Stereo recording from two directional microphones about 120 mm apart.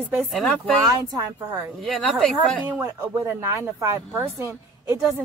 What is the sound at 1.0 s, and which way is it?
Speech, 25° right (ahead or behind).